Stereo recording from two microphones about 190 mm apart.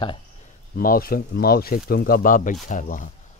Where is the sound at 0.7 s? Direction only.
50° left (ahead or behind).